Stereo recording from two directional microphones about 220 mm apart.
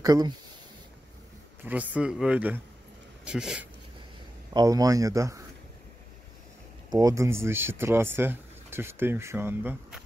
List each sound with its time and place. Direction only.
0.0 s speech: 15° right (ahead or behind)
1.7 s speech: 5° right (ahead or behind)
4.6 s speech: 15° right (ahead or behind)
6.9 s speech: 15° right (ahead or behind)